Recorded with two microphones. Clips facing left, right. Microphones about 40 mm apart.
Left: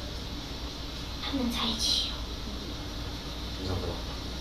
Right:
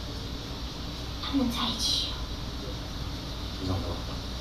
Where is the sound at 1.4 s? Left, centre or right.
Left.